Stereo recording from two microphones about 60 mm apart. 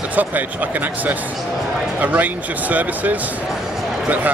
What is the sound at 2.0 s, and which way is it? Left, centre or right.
Speech, right.